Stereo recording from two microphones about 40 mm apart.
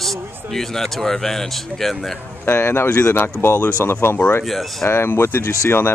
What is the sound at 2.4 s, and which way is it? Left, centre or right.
Speech, left.